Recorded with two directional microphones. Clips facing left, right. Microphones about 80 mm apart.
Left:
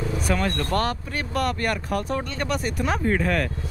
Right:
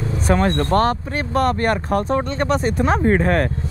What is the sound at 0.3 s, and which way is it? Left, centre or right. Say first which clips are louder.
Speech: right 8 dB; right.